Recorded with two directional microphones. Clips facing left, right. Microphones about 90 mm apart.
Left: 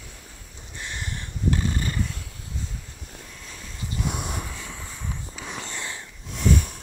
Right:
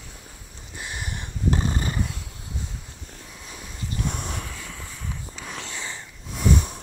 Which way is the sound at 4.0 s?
10° left (ahead or behind).